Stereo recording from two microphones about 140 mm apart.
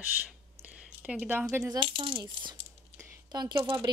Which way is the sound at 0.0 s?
10° right (ahead or behind).